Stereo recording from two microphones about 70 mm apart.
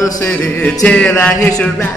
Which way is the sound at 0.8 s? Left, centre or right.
Centre.